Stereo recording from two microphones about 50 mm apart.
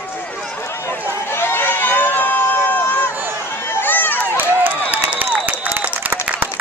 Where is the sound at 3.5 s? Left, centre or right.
Left.